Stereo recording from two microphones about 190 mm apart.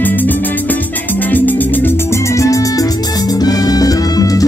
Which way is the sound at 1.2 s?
10° left (ahead or behind).